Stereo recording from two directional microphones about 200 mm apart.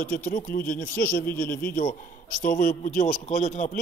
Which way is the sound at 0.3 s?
45° left (ahead or behind).